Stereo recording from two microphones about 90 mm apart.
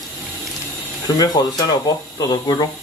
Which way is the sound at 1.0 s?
45° left (ahead or behind).